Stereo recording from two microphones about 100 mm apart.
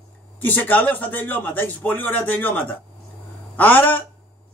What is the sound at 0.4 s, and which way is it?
A man's voice, 15° left (ahead or behind).